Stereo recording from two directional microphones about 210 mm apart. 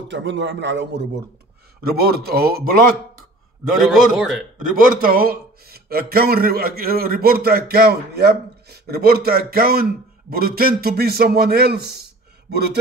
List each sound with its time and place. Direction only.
0.1 s a man's voice: 55° right (ahead or behind)
3.8 s a man's voice: centre (ahead or behind)
4.6 s speech: 40° right (ahead or behind)